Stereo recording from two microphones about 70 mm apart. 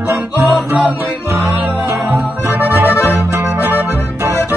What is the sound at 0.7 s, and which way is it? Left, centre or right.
Music, right.